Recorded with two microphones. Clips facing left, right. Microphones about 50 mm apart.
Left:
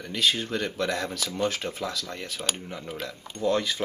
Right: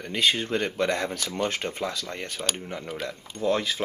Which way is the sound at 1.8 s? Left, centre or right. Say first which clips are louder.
Right 2 dB; right.